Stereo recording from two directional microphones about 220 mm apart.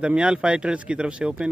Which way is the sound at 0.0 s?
5° right (ahead or behind).